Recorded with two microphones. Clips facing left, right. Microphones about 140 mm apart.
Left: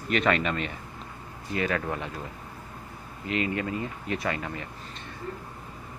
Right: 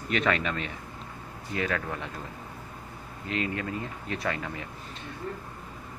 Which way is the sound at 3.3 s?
5° left (ahead or behind).